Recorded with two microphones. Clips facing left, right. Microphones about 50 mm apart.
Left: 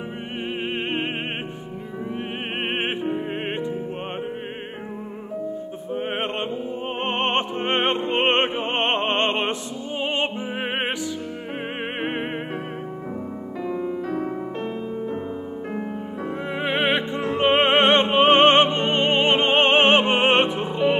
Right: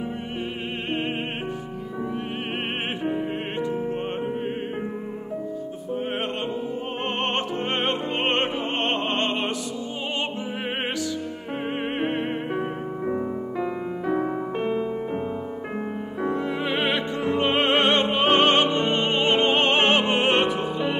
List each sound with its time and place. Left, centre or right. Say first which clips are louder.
5.9 s music: left 1 dB; left
13.0 s music: right 5 dB; centre
16.3 s music: right 1 dB; left